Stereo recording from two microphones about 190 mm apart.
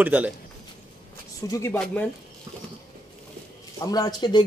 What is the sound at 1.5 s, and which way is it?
Speech, 10° left (ahead or behind).